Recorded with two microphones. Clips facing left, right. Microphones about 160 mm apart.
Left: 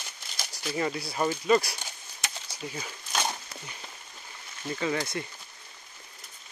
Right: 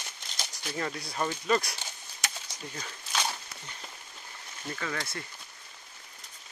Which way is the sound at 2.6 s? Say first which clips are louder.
Left 5 dB; 5° left (ahead or behind).